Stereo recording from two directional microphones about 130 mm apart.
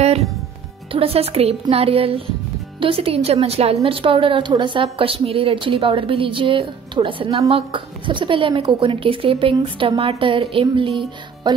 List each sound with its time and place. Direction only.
0.9 s a woman's voice: 50° right (ahead or behind)